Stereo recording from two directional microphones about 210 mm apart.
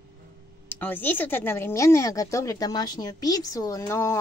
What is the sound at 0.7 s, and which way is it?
A woman's voice, 10° left (ahead or behind).